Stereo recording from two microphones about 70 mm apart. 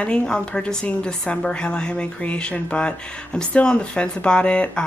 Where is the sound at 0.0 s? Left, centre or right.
Centre.